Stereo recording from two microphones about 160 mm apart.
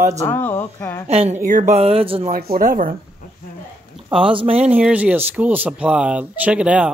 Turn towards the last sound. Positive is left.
turn(degrees=-5)  # may be behind; listen again after turning